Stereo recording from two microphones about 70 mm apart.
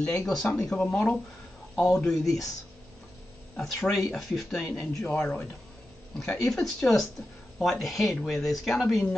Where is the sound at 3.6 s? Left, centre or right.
Centre.